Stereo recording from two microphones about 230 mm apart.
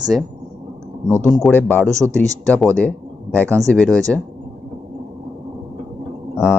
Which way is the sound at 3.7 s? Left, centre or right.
Centre.